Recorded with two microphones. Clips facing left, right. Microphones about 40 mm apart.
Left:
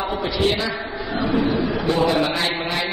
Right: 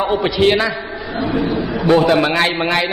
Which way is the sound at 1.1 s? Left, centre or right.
Centre.